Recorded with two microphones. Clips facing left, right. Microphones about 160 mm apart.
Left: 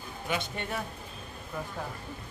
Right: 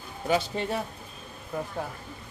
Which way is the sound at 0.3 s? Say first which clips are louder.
Right 7 dB; 30° right (ahead or behind).